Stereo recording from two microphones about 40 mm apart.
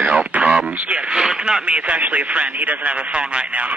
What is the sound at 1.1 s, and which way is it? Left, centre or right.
Speech, centre.